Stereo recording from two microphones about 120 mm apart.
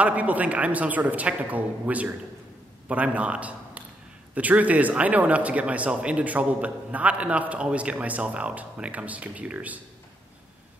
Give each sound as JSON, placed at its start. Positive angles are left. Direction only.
{"t": 0.0, "sound": "a man's voice", "side_deg": -10}